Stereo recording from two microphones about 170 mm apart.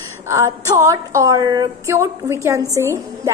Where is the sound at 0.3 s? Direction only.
20° right (ahead or behind).